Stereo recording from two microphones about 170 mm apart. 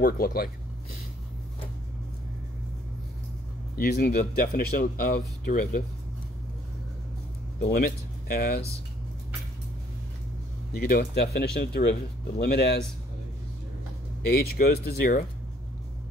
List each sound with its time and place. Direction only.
0.0 s speech: 60° left (ahead or behind)
3.7 s speech: 60° left (ahead or behind)
7.6 s speech: 60° left (ahead or behind)
10.7 s speech: 60° left (ahead or behind); by 12.7 s 75° left (ahead or behind)
14.4 s speech: 65° left (ahead or behind)